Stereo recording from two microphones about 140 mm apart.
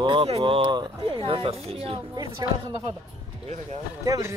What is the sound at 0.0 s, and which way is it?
Speech, 40° right (ahead or behind).